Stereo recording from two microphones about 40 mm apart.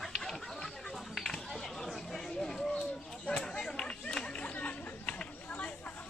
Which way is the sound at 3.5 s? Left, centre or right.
Centre.